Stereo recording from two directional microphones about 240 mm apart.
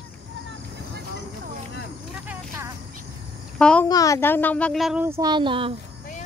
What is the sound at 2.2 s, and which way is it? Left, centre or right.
Vehicle, centre.